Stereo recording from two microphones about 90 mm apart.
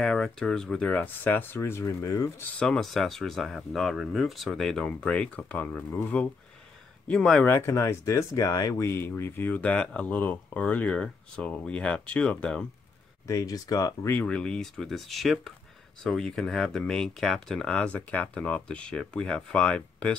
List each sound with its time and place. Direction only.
0.0 s speech: 5° left (ahead or behind); by 2.4 s 35° left (ahead or behind)
2.6 s speech: 5° left (ahead or behind); by 6.2 s 20° left (ahead or behind)
7.1 s speech: 10° left (ahead or behind)
7.4 s speech: 25° left (ahead or behind); by 8.7 s 45° left (ahead or behind)
8.7 s speech: 30° left (ahead or behind); by 12.6 s 10° left (ahead or behind)
13.3 s speech: 45° left (ahead or behind)
14.2 s speech: 10° left (ahead or behind)